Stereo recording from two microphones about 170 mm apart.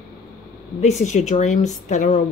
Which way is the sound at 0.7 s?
40° left (ahead or behind).